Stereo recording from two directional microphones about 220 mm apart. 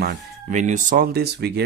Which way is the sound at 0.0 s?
35° right (ahead or behind).